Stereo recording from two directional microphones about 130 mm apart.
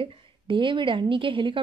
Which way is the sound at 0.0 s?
40° right (ahead or behind).